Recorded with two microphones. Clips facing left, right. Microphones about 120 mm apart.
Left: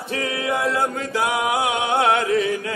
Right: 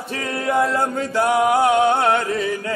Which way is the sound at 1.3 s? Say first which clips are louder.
Right 8 dB; 40° right (ahead or behind).